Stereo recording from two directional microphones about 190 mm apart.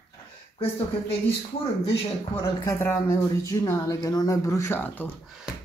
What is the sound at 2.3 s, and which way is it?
Speech, 15° left (ahead or behind).